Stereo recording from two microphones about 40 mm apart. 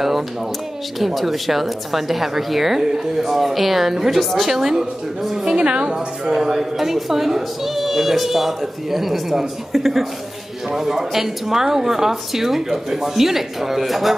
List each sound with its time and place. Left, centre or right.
0.9 s speech: centre
4.5 s speech: centre
5.6 s a woman's voice: right
5.9 s speech: centre